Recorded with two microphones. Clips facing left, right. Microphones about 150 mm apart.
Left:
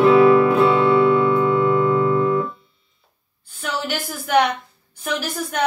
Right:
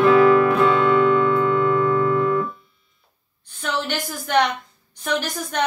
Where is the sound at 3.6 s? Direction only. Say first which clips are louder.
Even; 5° left (ahead or behind).